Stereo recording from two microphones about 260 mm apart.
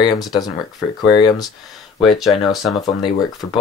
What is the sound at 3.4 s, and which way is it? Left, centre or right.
Speech, centre.